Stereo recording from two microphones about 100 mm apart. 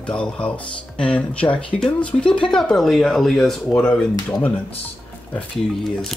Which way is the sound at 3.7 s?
20° left (ahead or behind).